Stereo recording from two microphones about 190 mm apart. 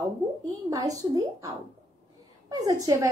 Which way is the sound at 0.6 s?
20° right (ahead or behind).